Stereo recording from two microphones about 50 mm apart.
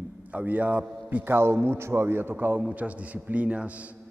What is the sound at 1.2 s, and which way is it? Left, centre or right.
A man's voice, right.